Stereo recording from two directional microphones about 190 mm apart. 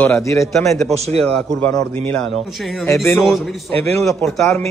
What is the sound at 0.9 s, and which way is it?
Speech, 35° right (ahead or behind).